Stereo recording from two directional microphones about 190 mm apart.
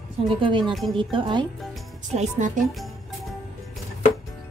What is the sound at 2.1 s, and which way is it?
Speech, 35° right (ahead or behind).